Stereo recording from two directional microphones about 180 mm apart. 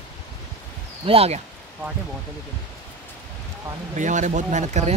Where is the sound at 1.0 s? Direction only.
35° right (ahead or behind).